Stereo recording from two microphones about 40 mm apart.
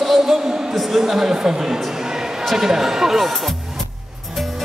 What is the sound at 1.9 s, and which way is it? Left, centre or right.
Basketball bounce, centre.